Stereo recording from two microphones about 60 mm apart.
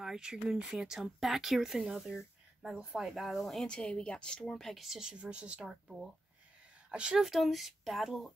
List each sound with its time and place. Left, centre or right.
0.0 s speech: centre
3.6 s speech: centre
5.1 s speech: centre
6.9 s a woman's voice: centre
7.2 s speech: centre